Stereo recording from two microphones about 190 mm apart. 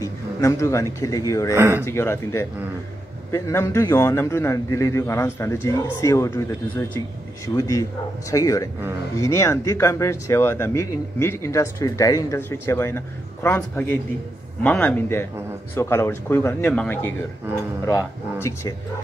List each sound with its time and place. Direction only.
0.0 s a sound: 15° left (ahead or behind)
0.9 s speech: 20° left (ahead or behind)
1.5 s speech: 10° right (ahead or behind)
1.9 s speech: 15° left (ahead or behind)
7.4 s speech: 15° left (ahead or behind)